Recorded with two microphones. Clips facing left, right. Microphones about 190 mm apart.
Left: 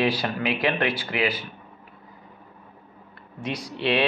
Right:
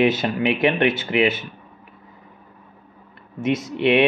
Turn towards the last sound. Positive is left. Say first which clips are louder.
# right 6 dB
turn(degrees=-20)  # may be behind; listen again after turning